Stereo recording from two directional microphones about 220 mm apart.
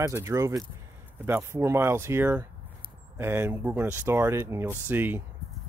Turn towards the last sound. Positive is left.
turn(degrees=-10)  # may be behind; listen again after turning